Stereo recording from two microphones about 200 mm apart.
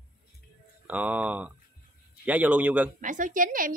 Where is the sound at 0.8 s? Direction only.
10° right (ahead or behind).